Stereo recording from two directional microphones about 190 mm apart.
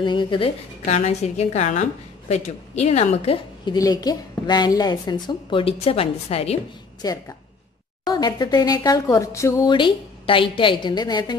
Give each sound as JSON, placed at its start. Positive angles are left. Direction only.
{"t": 0.0, "sound": "speech", "side_deg": 25}
{"t": 0.8, "sound": "a woman's voice", "side_deg": 35}
{"t": 3.7, "sound": "speech", "side_deg": 20}
{"t": 7.0, "sound": "speech", "side_deg": 20}